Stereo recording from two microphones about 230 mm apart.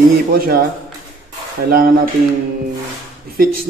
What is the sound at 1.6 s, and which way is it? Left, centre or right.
Speech, right.